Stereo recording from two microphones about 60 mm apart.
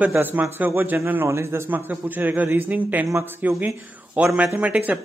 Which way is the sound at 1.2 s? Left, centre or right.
Right.